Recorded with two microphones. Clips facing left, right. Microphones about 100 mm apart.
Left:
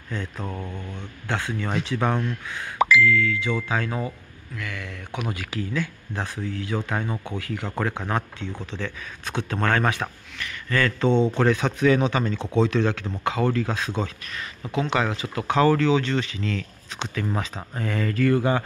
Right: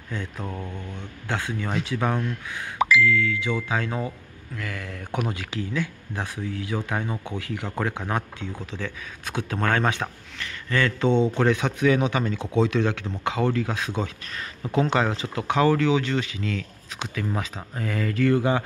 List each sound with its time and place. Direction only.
0.1 s speech: 5° right (ahead or behind)
1.3 s speech: 15° right (ahead or behind)
4.6 s speech: 35° right (ahead or behind)
5.3 s speech: 20° right (ahead or behind)
14.7 s speech: 35° right (ahead or behind); by 18.1 s 5° right (ahead or behind)
18.1 s speech: 20° right (ahead or behind)